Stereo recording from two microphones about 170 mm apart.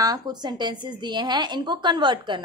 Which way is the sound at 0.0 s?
20° right (ahead or behind).